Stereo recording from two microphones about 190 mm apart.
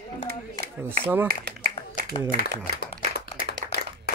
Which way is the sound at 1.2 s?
55° right (ahead or behind).